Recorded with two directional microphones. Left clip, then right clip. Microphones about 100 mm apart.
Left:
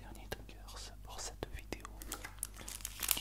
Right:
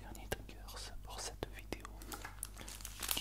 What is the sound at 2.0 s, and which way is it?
Dishes, 35° left (ahead or behind).